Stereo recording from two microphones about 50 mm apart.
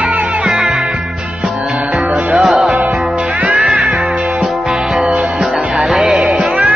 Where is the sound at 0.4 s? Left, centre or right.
Centre.